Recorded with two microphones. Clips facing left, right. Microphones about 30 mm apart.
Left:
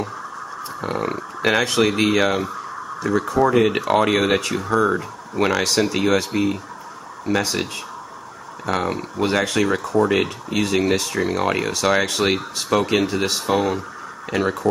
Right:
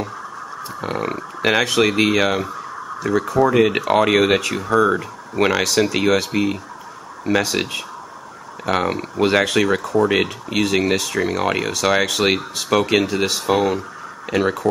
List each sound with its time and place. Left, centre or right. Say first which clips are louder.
0.7 s speech: even; centre
5.6 s speech: right 1 dB; centre
8.6 s speech: right 3 dB; right